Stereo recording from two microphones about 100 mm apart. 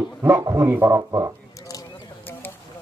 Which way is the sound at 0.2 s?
30° right (ahead or behind).